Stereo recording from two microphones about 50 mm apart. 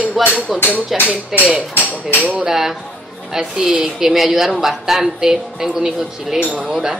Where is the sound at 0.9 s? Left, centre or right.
Centre.